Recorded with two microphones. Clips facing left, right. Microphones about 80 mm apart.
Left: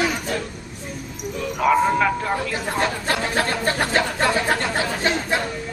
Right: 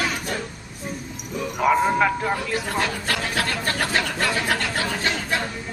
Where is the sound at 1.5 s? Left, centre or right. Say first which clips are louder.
Left 1 dB; centre.